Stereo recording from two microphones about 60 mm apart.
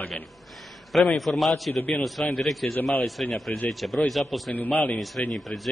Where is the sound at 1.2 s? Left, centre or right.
Centre.